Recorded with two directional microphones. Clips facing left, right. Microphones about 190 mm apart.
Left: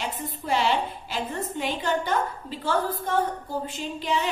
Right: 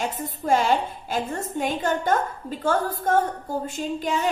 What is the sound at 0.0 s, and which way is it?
A woman's voice, 45° right (ahead or behind).